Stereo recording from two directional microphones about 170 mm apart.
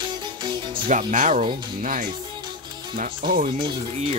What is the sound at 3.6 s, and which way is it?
Speech, 25° right (ahead or behind).